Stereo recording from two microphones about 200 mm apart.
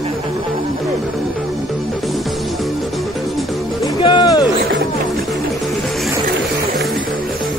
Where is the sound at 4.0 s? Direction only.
20° left (ahead or behind).